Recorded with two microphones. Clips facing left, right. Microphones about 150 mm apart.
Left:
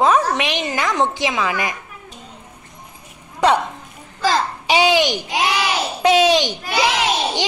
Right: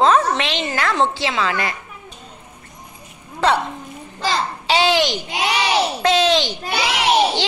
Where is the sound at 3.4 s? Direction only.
15° left (ahead or behind).